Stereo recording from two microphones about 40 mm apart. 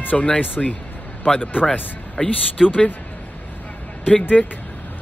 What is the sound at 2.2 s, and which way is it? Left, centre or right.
Speech, left.